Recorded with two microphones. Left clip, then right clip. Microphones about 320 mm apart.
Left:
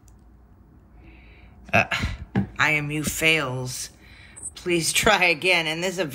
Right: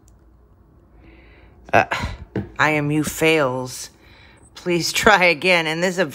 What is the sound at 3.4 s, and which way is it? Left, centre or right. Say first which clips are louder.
Speech: right 8 dB; centre.